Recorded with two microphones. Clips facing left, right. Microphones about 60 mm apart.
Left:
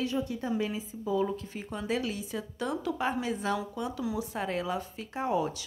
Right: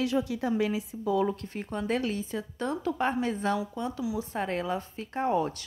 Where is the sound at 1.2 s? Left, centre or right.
Right.